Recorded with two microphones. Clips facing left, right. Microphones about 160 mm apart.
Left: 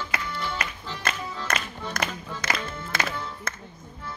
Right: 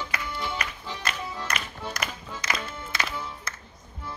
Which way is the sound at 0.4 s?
15° right (ahead or behind).